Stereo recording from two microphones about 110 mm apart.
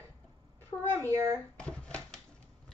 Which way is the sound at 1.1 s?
30° right (ahead or behind).